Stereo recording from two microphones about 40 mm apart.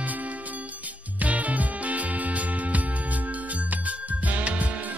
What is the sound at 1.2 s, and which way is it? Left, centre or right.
Music, right.